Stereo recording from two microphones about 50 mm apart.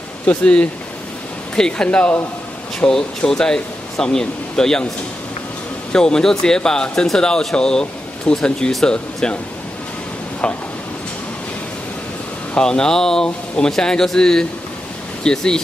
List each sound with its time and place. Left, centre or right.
0.3 s speech: left
2.9 s speech: centre
5.9 s speech: centre
10.4 s speech: centre
12.5 s speech: centre